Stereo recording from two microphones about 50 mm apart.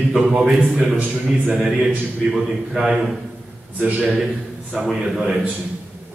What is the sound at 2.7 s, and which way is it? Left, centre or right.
Speech, centre.